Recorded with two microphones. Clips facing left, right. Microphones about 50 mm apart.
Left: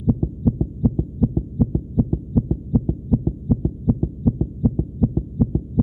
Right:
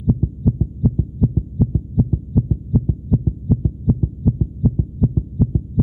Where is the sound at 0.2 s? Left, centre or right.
Centre.